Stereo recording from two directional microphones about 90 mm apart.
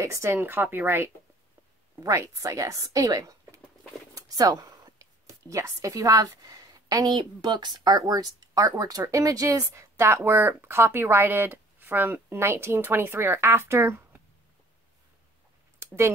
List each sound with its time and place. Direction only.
0.0 s speech: 30° right (ahead or behind)
4.1 s a sound: 40° right (ahead or behind)
5.5 s a woman's voice: 35° right (ahead or behind)